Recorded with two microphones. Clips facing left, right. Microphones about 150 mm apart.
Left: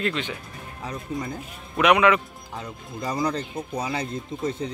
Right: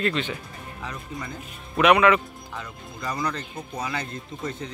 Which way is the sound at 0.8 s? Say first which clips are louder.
Left 5 dB; 30° left (ahead or behind).